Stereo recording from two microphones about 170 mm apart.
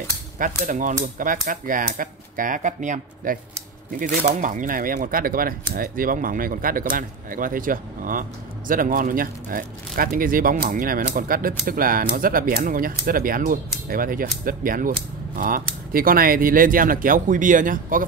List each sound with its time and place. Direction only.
0.6 s speech: 50° right (ahead or behind)